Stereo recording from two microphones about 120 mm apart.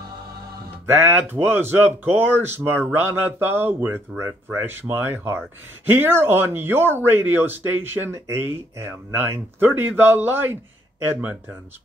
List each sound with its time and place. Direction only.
0.8 s speech: 15° right (ahead or behind)